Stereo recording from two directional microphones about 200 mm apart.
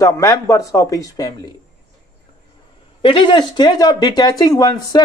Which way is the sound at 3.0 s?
25° left (ahead or behind).